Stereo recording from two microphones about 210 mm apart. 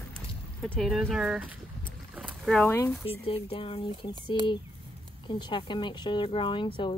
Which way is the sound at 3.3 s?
25° left (ahead or behind).